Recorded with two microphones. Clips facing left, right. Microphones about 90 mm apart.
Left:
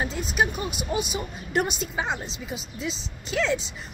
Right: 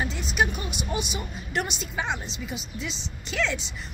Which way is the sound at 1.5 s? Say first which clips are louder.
Left 4 dB; 40° left (ahead or behind).